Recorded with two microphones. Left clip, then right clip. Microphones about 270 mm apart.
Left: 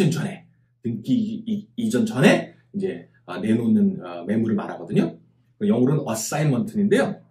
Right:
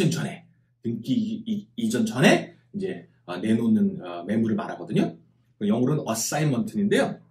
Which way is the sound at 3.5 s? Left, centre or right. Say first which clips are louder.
Left 2 dB; centre.